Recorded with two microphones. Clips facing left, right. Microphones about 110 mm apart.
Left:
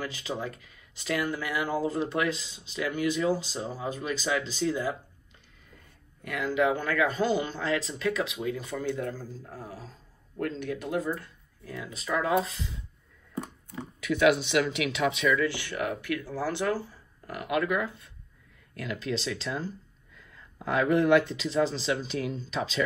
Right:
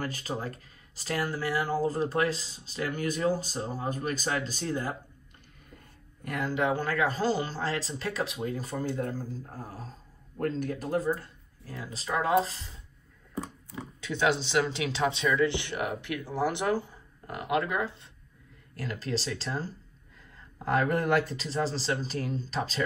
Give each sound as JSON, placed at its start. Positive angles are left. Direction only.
{"t": 0.0, "sound": "speech", "side_deg": -45}
{"t": 6.2, "sound": "speech", "side_deg": -40}
{"t": 13.7, "sound": "speech", "side_deg": -20}
{"t": 18.8, "sound": "speech", "side_deg": -35}